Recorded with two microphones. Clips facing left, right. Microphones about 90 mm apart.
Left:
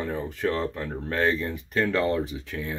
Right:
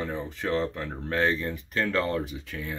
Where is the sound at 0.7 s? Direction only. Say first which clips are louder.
Left 1 dB; 5° left (ahead or behind).